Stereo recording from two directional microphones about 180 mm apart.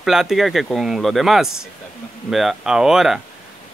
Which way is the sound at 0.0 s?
Centre (ahead or behind).